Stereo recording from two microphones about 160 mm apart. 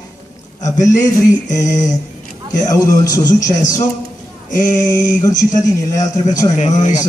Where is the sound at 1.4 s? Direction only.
20° left (ahead or behind).